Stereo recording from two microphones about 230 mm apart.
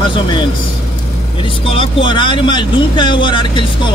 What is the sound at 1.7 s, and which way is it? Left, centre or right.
Speech, left.